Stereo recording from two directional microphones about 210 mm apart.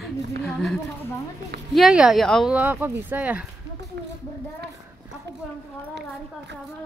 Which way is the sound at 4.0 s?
50° right (ahead or behind).